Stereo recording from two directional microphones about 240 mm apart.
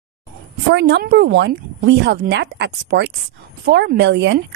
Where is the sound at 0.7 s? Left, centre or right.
Right.